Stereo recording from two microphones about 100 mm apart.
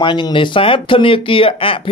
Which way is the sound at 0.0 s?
50° left (ahead or behind).